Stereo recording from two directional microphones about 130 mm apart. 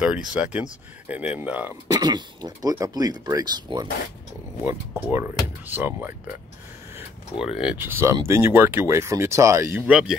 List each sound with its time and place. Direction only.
0.0 s speech: 10° right (ahead or behind)
1.9 s speech: 30° right (ahead or behind)
5.1 s speech: 15° right (ahead or behind)
7.4 s speech: 45° left (ahead or behind)
7.7 s speech: 15° right (ahead or behind)